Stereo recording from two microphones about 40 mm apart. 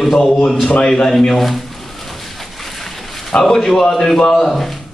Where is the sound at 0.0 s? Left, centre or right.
Centre.